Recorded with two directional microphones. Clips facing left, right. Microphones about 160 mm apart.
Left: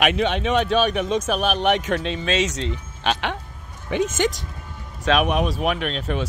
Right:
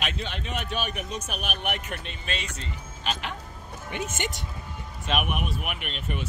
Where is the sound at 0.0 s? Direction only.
70° left (ahead or behind).